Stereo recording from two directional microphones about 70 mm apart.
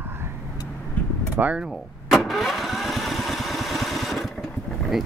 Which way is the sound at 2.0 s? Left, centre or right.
Centre.